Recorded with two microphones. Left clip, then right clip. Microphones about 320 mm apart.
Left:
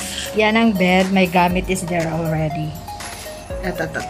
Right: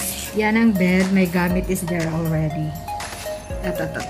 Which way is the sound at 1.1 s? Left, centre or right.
Centre.